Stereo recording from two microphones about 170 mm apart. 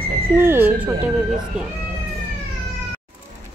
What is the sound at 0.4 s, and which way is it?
Speech, 10° right (ahead or behind).